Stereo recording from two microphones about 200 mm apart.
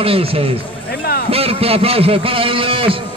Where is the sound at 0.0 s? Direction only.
30° right (ahead or behind).